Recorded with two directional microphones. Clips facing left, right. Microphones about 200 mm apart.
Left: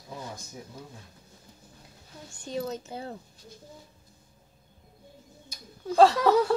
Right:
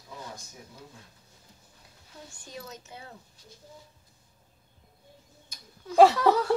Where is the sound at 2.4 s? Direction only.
30° left (ahead or behind).